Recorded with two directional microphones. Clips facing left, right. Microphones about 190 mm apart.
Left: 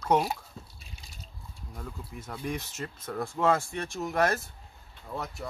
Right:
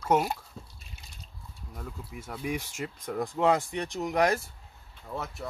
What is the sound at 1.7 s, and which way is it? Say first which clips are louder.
Speech: even; 5° right (ahead or behind).